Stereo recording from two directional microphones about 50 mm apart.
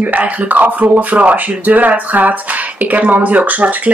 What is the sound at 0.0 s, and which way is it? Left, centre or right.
Speech, right.